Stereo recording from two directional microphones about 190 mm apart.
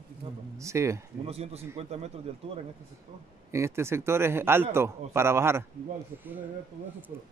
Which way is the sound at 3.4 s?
15° right (ahead or behind).